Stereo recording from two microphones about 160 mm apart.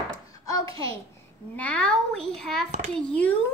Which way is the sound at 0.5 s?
20° left (ahead or behind).